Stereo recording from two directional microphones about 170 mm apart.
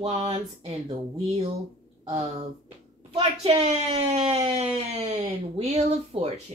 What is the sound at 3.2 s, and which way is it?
Speech, 35° right (ahead or behind).